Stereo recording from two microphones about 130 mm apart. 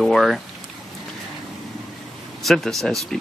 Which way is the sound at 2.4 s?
Centre (ahead or behind).